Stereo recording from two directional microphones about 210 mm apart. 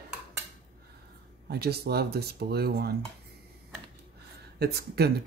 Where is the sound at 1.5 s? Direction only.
50° right (ahead or behind).